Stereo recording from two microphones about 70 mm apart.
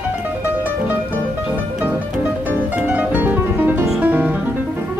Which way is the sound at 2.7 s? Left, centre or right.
Right.